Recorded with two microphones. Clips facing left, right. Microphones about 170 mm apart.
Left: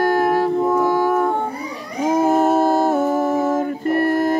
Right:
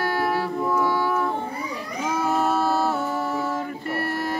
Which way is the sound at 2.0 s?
45° left (ahead or behind).